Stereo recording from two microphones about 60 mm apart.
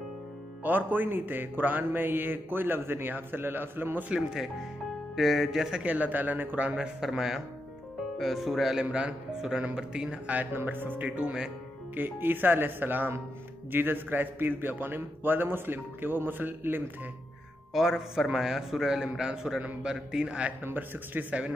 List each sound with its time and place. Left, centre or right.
0.7 s a man's voice: right
4.1 s speech: centre
5.8 s speech: right
7.0 s speech: centre
10.2 s speech: right
10.5 s a man's voice: right
11.1 s speech: centre
11.9 s a man's voice: right
17.7 s speech: centre
20.6 s a man's voice: right